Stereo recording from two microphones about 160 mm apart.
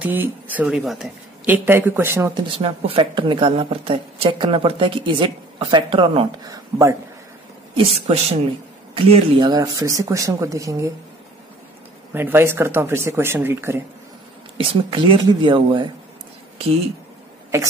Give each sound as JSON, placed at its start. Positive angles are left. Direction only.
{"t": 0.0, "sound": "speech", "side_deg": -10}
{"t": 1.4, "sound": "speech", "side_deg": -15}
{"t": 2.3, "sound": "a woman's voice", "side_deg": -30}
{"t": 6.4, "sound": "speech", "side_deg": -20}
{"t": 7.7, "sound": "a woman's voice", "side_deg": -40}
{"t": 12.1, "sound": "speech", "side_deg": -15}
{"t": 14.6, "sound": "a woman's voice", "side_deg": -35}